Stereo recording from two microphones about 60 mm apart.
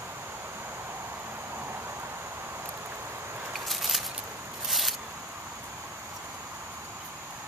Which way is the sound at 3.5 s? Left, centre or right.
Centre.